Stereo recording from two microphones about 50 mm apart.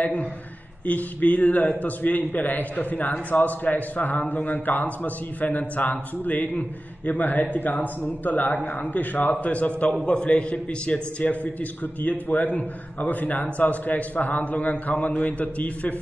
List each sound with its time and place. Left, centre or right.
0.0 s a man's voice: left